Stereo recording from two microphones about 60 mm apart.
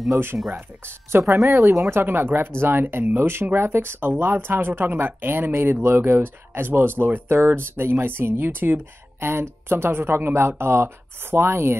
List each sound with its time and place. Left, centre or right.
0.3 s speech: centre
1.3 s speech: right
1.9 s speech: right